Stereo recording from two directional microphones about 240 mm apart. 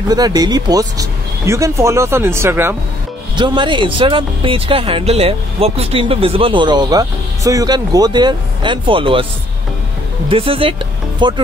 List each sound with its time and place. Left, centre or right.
0.1 s speech: centre
10.3 s speech: right